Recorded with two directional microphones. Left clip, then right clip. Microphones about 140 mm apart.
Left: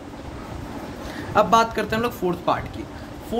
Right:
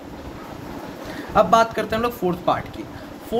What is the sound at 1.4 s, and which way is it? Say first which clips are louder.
Speech: right 2 dB; 10° left (ahead or behind).